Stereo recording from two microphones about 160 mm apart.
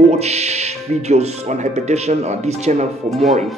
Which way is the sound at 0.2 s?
45° right (ahead or behind).